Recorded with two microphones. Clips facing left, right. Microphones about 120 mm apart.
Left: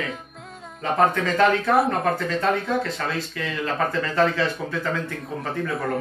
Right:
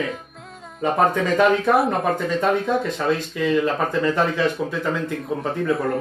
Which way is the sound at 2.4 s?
15° right (ahead or behind).